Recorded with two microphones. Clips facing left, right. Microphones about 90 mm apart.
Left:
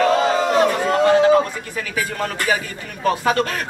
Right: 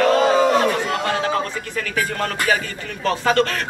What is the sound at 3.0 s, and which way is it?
Speech, 15° left (ahead or behind).